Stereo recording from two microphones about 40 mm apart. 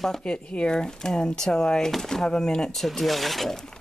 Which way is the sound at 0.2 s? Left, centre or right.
Left.